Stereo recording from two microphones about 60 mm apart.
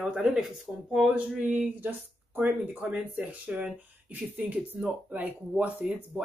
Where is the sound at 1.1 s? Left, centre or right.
Right.